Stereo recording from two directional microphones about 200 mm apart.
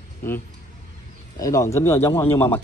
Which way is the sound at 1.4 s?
15° left (ahead or behind).